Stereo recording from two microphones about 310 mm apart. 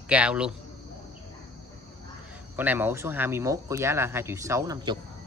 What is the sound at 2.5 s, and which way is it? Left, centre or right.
Speech, centre.